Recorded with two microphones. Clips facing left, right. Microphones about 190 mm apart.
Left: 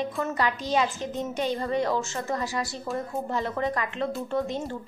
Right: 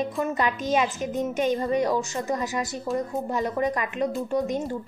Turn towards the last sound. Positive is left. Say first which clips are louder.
# right 3 dB
turn(degrees=-15)  # may be behind; listen again after turning